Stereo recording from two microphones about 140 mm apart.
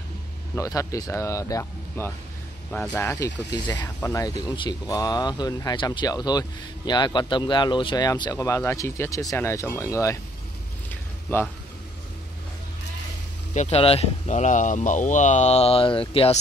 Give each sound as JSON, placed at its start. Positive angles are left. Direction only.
{"t": 0.6, "sound": "speech", "side_deg": 25}
{"t": 2.7, "sound": "speech", "side_deg": 10}
{"t": 3.5, "sound": "speech", "side_deg": 30}
{"t": 10.9, "sound": "a sound", "side_deg": 10}
{"t": 13.5, "sound": "speech", "side_deg": 55}
{"t": 13.7, "sound": "speech", "side_deg": 45}